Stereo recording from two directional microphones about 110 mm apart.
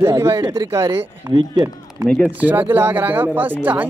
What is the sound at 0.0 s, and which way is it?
Speech, 25° right (ahead or behind).